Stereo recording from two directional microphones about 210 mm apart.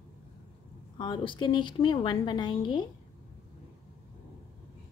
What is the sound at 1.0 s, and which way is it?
A woman's voice, 25° left (ahead or behind).